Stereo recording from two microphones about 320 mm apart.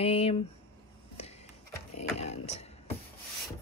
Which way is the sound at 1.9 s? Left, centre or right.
Left.